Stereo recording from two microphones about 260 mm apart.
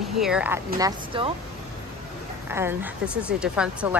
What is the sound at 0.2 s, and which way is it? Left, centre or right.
Speech, centre.